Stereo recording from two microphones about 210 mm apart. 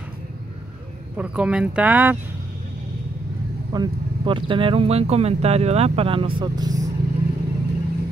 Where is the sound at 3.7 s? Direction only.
20° right (ahead or behind).